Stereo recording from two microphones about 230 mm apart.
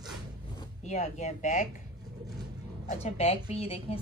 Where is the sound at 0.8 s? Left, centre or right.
Left.